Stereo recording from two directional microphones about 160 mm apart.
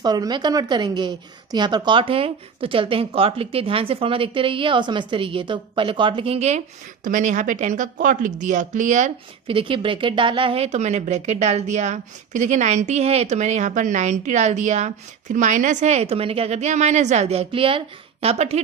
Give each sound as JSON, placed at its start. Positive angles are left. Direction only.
{"t": 0.0, "sound": "a woman's voice", "side_deg": -25}
{"t": 7.1, "sound": "speech", "side_deg": -55}
{"t": 9.5, "sound": "speech", "side_deg": -30}